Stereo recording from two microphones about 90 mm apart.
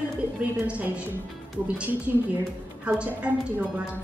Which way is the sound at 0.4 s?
15° right (ahead or behind).